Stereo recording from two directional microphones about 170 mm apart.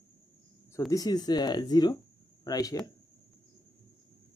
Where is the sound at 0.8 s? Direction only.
20° left (ahead or behind).